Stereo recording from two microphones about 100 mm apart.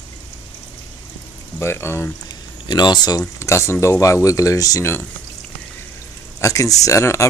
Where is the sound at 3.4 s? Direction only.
30° left (ahead or behind).